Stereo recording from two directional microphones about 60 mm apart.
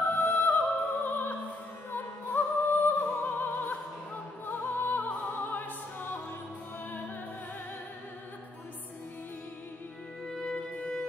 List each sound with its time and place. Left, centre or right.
0.2 s music: left
1.9 s opera: left
4.5 s music: left
5.2 s opera: left
10.2 s music: centre